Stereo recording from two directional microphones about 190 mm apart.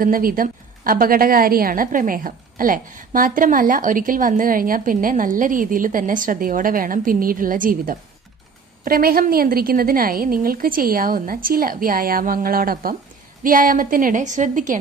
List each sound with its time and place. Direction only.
0.0 s a woman's voice: 50° right (ahead or behind)